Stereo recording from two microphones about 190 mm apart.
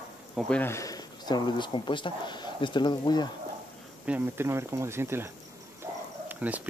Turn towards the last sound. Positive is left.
turn(degrees=-10)  # may be behind; listen again after turning